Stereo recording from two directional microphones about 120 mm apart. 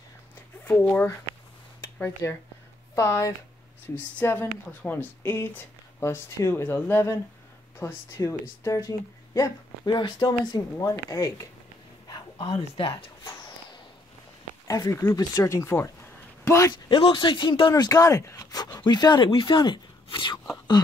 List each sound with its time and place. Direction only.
0.7 s speech: 15° left (ahead or behind)
9.9 s speech: 40° left (ahead or behind)
12.5 s speech: 50° left (ahead or behind)
14.7 s a man's voice: 30° left (ahead or behind)
16.9 s speech: 40° left (ahead or behind)